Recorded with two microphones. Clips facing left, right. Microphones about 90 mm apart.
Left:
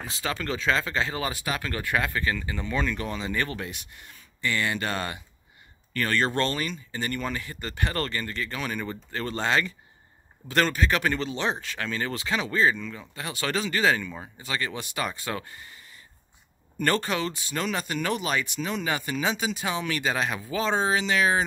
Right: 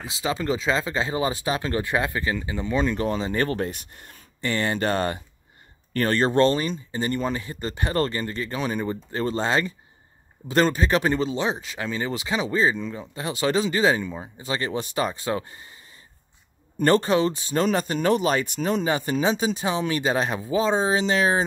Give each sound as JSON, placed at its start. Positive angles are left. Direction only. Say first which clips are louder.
{"t": 0.2, "sound": "speech", "louder": "right 5 dB", "side_deg": -20}
{"t": 11.4, "sound": "speech", "louder": "right 2 dB", "side_deg": -10}
{"t": 18.9, "sound": "speech", "louder": "right 3 dB", "side_deg": -30}